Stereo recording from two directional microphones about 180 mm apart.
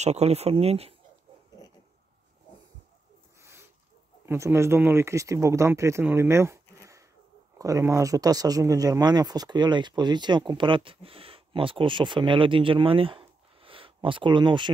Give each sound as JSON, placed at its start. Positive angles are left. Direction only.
{"t": 0.0, "sound": "speech", "side_deg": -35}
{"t": 4.3, "sound": "speech", "side_deg": -15}